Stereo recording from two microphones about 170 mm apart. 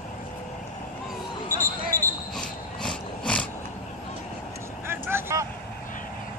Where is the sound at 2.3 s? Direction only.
5° left (ahead or behind).